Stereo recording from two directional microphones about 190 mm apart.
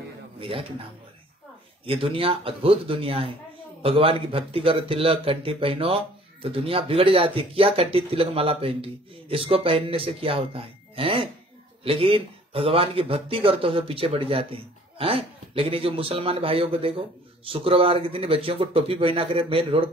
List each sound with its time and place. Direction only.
0.4 s speech: 30° right (ahead or behind)
1.9 s speech: 30° right (ahead or behind)